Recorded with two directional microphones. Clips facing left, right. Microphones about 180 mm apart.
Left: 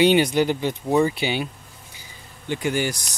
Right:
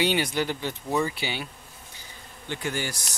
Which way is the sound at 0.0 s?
20° left (ahead or behind).